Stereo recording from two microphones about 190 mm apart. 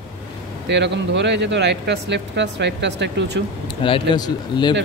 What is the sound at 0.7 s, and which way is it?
Speech, 65° right (ahead or behind).